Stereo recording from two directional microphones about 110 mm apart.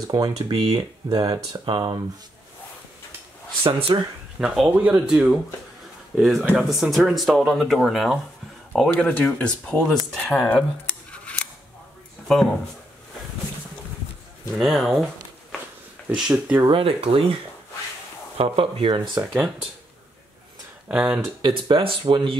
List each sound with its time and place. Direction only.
0.0 s speech: 35° right (ahead or behind)
3.6 s speech: 55° right (ahead or behind)
4.4 s speech: 10° right (ahead or behind)
8.9 s speech: 15° left (ahead or behind)
10.9 s scissors: 10° left (ahead or behind)
14.6 s speech: centre (ahead or behind)
16.1 s speech: 10° right (ahead or behind)
16.6 s speech: 55° right (ahead or behind)
18.4 s speech: 55° right (ahead or behind)
19.3 s speech: centre (ahead or behind)
20.9 s speech: 5° right (ahead or behind)
21.4 s speech: 45° right (ahead or behind)